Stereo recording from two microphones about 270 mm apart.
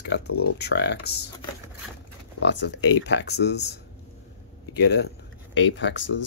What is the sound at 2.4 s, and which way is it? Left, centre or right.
Speech, left.